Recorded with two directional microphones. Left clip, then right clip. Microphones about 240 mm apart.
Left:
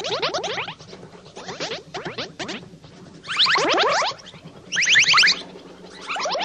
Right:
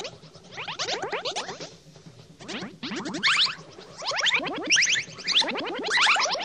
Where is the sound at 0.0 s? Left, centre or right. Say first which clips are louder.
Left 16 dB; left.